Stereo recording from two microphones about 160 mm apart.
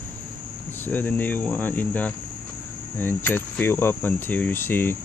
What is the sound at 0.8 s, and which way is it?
Speech, 10° left (ahead or behind).